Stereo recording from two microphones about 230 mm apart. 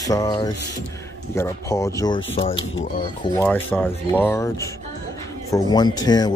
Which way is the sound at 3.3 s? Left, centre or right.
Centre.